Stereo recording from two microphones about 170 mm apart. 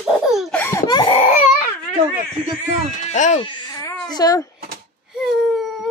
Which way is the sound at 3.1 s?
45° left (ahead or behind).